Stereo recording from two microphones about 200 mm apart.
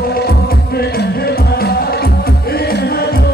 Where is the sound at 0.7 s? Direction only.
50° left (ahead or behind).